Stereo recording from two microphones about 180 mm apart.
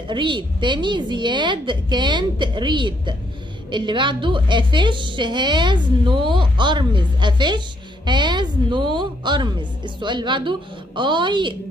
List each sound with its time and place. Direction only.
0.1 s a woman's voice: 25° right (ahead or behind)